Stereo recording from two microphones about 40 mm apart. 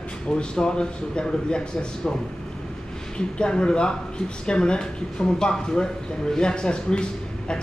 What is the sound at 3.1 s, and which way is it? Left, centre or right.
Speech, left.